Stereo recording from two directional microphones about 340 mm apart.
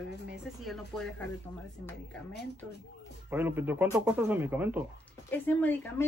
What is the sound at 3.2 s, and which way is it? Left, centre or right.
A woman's voice, centre.